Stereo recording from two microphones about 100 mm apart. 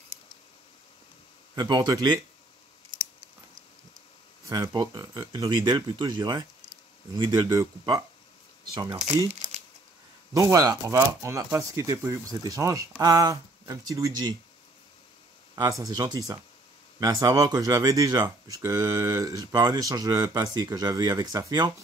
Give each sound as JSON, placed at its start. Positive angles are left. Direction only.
{"t": 1.5, "sound": "speech", "side_deg": -45}
{"t": 4.5, "sound": "speech", "side_deg": -45}
{"t": 10.3, "sound": "speech", "side_deg": -40}
{"t": 15.8, "sound": "speech", "side_deg": -40}